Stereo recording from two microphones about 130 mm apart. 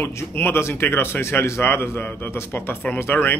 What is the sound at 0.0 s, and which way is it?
Speech, 15° left (ahead or behind).